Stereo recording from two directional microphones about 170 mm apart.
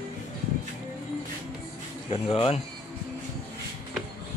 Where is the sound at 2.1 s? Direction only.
35° left (ahead or behind).